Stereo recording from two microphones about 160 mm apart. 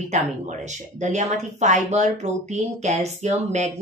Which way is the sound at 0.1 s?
50° right (ahead or behind).